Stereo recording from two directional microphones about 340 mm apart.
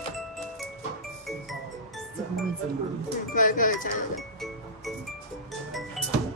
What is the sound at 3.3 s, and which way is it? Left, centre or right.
Speech, left.